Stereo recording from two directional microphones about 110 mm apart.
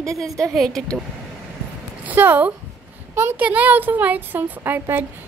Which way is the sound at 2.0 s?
15° right (ahead or behind).